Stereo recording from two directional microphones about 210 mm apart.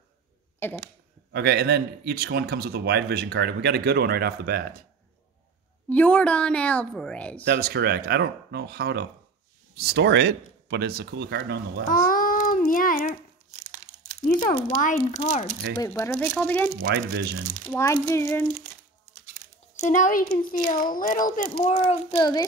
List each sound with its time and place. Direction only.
0.6 s speech: 10° left (ahead or behind)
1.3 s a man's voice: 50° right (ahead or behind)
5.9 s a woman's voice: 5° left (ahead or behind)
7.4 s a man's voice: 50° right (ahead or behind)
11.9 s child singing: 40° left (ahead or behind)
14.8 s a child's voice: 35° left (ahead or behind)
15.8 s speech: 10° left (ahead or behind)
16.8 s a man's voice: 45° right (ahead or behind)
17.6 s speech: 15° left (ahead or behind)
19.8 s a child's voice: 35° left (ahead or behind); by 22.5 s 20° left (ahead or behind)